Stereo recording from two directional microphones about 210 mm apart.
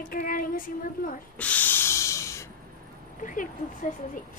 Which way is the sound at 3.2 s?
40° left (ahead or behind).